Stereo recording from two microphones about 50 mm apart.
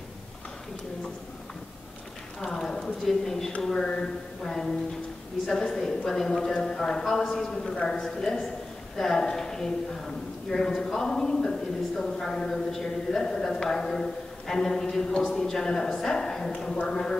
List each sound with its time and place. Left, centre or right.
2.5 s a man's voice: centre